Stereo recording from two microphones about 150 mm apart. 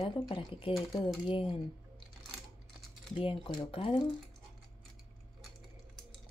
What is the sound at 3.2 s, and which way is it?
Speech, 40° left (ahead or behind).